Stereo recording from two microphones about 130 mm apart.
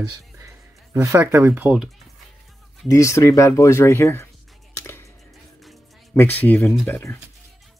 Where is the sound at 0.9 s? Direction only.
20° right (ahead or behind).